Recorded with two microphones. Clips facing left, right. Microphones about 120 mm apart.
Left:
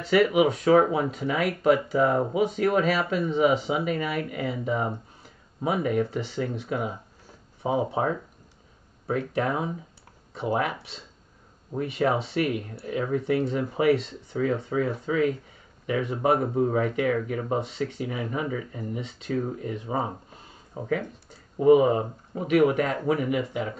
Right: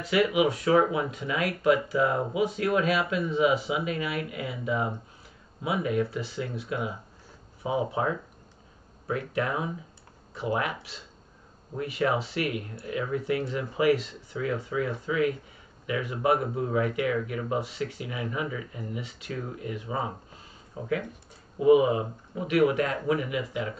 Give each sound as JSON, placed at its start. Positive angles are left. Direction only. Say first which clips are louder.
{"t": 0.1, "sound": "speech", "louder": "left 3 dB", "side_deg": 40}
{"t": 21.5, "sound": "speech", "louder": "left 2 dB", "side_deg": 40}